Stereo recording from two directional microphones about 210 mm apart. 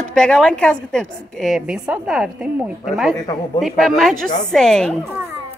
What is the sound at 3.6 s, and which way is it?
A woman's voice, centre (ahead or behind).